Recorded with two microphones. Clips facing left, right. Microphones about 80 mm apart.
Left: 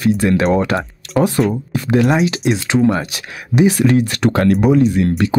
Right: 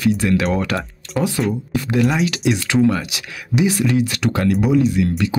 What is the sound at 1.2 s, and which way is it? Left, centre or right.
Speech, left.